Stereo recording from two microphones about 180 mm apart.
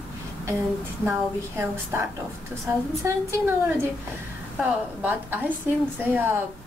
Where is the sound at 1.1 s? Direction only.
15° right (ahead or behind).